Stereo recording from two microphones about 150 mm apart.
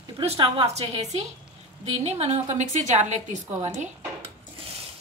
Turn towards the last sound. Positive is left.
turn(degrees=-50)  # may be behind; listen again after turning